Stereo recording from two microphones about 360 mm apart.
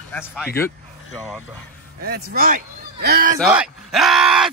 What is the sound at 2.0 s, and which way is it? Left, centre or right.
Speech, right.